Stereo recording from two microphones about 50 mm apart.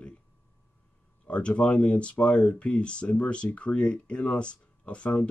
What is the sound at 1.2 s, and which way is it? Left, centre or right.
Speech, left.